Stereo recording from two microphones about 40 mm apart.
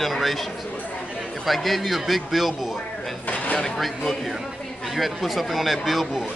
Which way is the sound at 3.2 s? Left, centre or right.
Left.